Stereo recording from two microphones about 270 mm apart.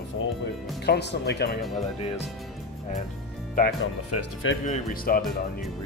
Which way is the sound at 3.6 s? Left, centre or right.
Left.